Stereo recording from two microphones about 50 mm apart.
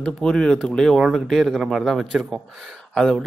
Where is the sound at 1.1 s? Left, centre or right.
Centre.